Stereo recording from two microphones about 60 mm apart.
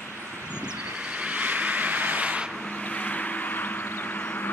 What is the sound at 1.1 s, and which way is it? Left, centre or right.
Vehicle, right.